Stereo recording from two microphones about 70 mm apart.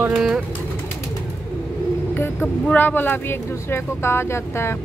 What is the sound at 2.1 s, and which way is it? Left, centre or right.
Speech, left.